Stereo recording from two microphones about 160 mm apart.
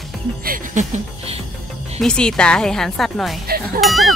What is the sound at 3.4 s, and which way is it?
Cowbell, 70° right (ahead or behind).